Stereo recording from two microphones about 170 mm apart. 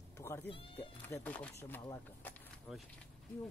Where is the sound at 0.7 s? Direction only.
10° left (ahead or behind).